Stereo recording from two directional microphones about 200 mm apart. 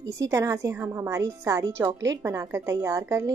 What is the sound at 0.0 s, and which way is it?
A woman's voice, 15° right (ahead or behind).